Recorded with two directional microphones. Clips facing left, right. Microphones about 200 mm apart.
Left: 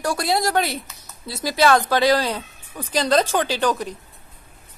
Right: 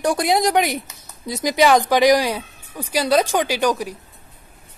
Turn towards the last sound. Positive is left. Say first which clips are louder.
# right 2 dB
turn(degrees=-10)  # may be behind; listen again after turning